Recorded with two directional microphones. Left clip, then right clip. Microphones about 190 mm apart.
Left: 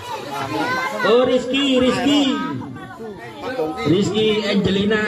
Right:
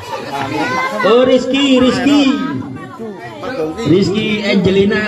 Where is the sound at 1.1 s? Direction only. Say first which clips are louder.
Right 5 dB; 10° left (ahead or behind).